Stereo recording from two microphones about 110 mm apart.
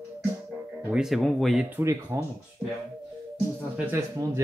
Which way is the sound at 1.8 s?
25° right (ahead or behind).